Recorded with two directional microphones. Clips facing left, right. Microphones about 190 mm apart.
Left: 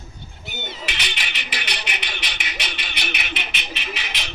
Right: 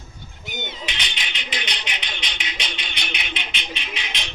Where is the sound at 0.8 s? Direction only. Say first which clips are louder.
Left 1 dB; 5° left (ahead or behind).